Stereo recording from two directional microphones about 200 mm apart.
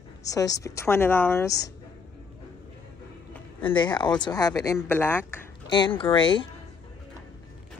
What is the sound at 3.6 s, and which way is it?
Speech, 25° left (ahead or behind).